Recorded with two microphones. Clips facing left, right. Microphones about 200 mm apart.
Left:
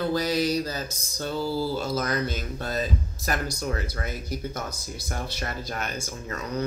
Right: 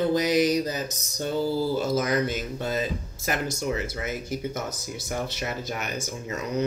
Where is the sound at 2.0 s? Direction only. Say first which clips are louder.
Right 3 dB; 15° right (ahead or behind).